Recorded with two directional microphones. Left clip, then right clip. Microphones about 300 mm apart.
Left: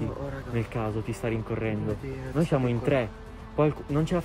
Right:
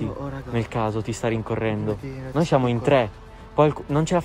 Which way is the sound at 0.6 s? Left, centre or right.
Centre.